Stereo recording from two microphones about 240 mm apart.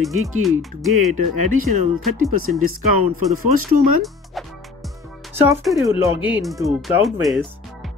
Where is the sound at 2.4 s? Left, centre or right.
Right.